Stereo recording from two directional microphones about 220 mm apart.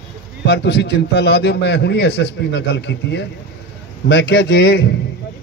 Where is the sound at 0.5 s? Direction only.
50° left (ahead or behind).